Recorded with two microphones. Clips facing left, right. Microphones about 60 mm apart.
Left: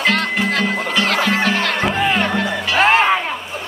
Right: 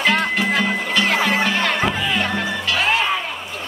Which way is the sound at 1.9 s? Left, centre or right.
Left.